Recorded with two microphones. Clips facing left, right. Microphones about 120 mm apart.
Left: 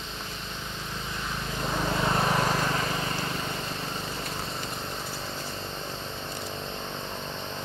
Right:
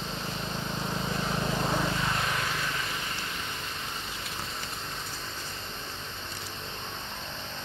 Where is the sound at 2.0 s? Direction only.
40° left (ahead or behind).